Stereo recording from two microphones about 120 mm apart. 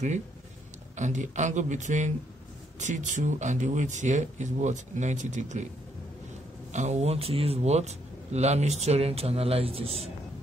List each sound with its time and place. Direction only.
0.9 s speech: 85° right
6.7 s speech: 75° right (ahead or behind); by 10.1 s 55° right (ahead or behind)